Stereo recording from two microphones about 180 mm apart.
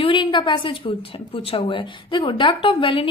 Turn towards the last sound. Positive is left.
turn(degrees=30)  # may be behind; listen again after turning